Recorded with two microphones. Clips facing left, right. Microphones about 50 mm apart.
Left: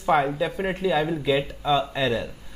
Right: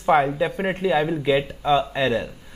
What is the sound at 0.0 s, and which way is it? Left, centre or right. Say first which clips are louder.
A woman's voice: right 3 dB; centre.